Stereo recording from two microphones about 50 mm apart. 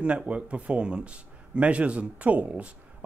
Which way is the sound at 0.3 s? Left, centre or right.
Right.